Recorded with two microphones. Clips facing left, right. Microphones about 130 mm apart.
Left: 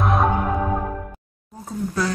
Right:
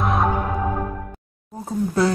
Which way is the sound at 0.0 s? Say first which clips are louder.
Left 1 dB; centre (ahead or behind).